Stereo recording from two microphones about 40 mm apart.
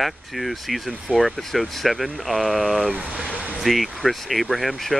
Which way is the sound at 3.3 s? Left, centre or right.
Left.